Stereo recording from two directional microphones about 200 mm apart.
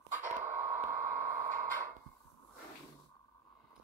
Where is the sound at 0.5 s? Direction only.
40° right (ahead or behind).